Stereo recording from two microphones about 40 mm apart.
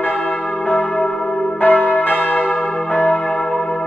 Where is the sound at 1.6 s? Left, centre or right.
Left.